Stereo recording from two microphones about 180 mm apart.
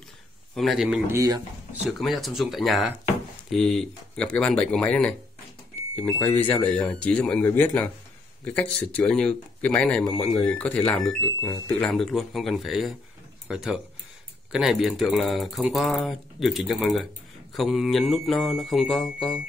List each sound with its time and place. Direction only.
0.6 s speech: centre (ahead or behind)
1.1 s speech: 20° right (ahead or behind)
1.9 s speech: centre (ahead or behind)